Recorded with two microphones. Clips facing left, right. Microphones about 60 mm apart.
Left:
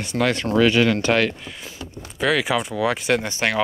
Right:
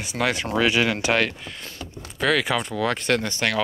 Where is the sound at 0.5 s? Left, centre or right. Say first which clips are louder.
Left 5 dB; centre.